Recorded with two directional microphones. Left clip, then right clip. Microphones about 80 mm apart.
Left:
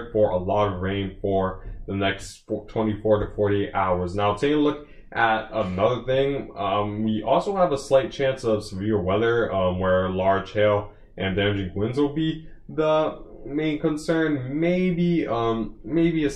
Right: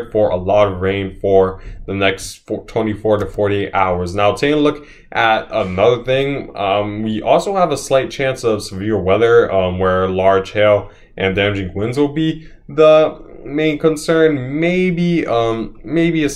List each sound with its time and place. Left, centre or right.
0.1 s speech: right